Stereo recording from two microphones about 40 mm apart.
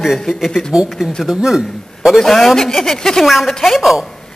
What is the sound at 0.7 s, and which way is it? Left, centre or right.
Speech, right.